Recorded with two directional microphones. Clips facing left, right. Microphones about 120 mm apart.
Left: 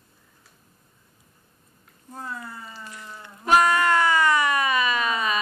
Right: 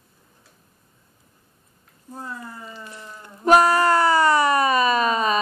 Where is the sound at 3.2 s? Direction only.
40° right (ahead or behind).